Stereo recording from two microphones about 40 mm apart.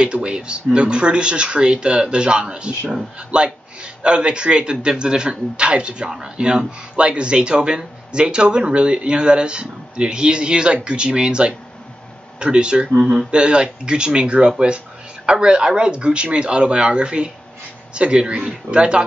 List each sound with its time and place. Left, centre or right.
0.0 s speech: right